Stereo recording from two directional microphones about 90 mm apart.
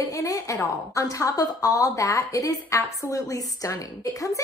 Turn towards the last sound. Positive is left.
turn(degrees=40)  # may be behind; listen again after turning